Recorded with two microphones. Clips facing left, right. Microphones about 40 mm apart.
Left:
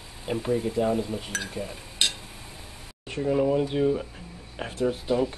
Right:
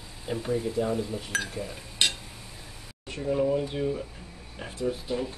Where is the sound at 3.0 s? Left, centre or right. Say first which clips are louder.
Left 4 dB; left.